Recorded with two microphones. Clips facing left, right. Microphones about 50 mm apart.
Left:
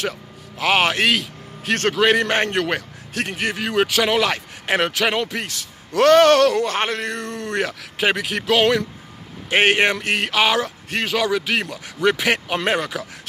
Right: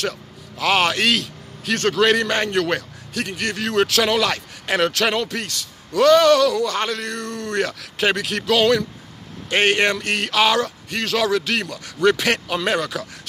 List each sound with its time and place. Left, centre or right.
0.6 s speech: left
1.6 s a man's voice: left
2.0 s speech: left
3.3 s a man's voice: centre
4.2 s speech: left
5.9 s speech: left; by 10.7 s centre
11.1 s a man's voice: centre
11.5 s a man's voice: centre
12.6 s speech: left